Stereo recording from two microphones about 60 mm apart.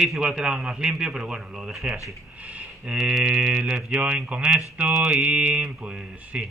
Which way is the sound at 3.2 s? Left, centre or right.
Centre.